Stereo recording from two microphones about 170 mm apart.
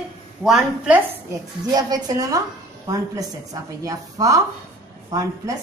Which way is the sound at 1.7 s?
20° right (ahead or behind).